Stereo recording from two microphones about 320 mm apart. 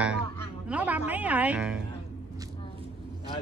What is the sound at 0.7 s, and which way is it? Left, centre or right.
A man's voice, centre.